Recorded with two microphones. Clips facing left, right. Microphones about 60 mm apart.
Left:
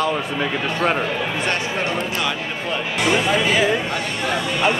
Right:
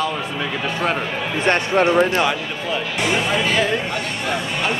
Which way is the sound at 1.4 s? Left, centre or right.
Right.